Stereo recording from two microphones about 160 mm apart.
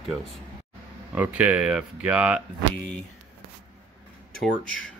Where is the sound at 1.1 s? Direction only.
10° right (ahead or behind).